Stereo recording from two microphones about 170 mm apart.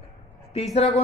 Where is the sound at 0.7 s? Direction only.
40° left (ahead or behind).